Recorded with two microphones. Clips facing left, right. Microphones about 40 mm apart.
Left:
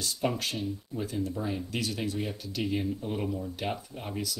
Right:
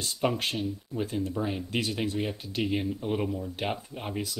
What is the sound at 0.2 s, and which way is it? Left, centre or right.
Speech, right.